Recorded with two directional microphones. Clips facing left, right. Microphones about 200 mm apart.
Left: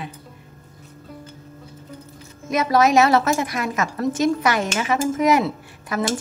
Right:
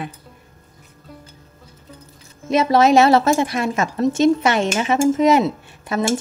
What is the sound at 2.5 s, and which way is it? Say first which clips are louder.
Speech: right 3 dB; 25° right (ahead or behind).